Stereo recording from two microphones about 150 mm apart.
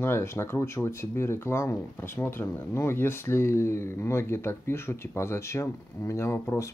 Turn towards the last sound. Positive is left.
turn(degrees=20)  # may be behind; listen again after turning